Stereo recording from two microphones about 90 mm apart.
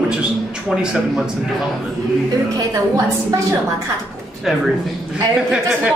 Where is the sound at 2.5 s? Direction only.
40° right (ahead or behind).